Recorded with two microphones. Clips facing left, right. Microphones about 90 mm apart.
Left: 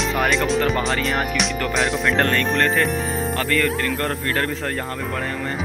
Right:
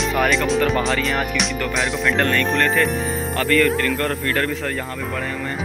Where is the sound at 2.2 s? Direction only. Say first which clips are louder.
Right 1 dB; 35° left (ahead or behind).